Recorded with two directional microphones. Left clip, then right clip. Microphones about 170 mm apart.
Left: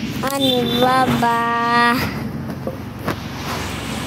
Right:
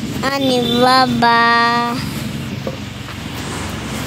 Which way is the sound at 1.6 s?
5° right (ahead or behind).